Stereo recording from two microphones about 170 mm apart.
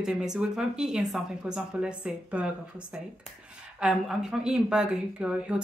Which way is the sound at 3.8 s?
5° right (ahead or behind).